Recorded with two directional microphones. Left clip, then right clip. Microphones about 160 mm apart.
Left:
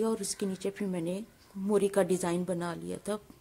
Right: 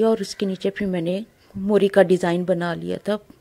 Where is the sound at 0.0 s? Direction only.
25° right (ahead or behind).